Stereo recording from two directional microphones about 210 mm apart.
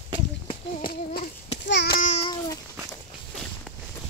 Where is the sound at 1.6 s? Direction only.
55° left (ahead or behind).